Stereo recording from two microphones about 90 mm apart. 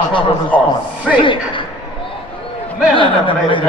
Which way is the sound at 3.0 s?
70° left (ahead or behind).